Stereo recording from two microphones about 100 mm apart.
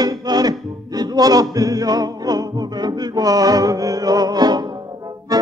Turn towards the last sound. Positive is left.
turn(degrees=-35)  # may be behind; listen again after turning